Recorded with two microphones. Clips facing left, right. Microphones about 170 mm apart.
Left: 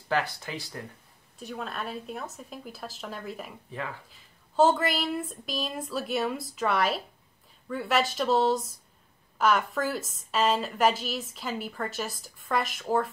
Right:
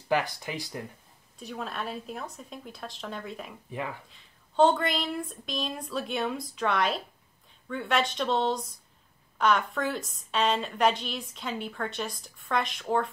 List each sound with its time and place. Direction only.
0.1 s speech: 15° right (ahead or behind)
1.4 s a woman's voice: centre (ahead or behind)